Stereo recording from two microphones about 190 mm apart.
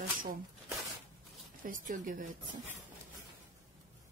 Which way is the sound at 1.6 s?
45° right (ahead or behind).